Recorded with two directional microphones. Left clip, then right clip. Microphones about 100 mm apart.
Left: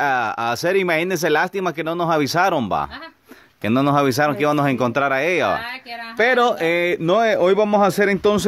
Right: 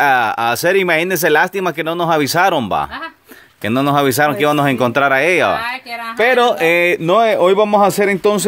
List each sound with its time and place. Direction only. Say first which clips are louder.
0.0 s speech: right 6 dB; 15° left (ahead or behind); by 2.9 s 30° left (ahead or behind)
3.6 s speech: right 3 dB; 50° left (ahead or behind); by 5.6 s 15° left (ahead or behind)
6.1 s speech: right 4 dB; 30° left (ahead or behind)
7.1 s speech: right 3 dB; 35° left (ahead or behind)